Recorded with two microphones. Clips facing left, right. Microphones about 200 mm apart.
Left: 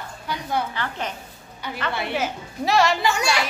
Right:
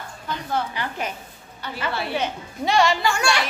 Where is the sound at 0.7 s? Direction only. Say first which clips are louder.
Even; 10° right (ahead or behind).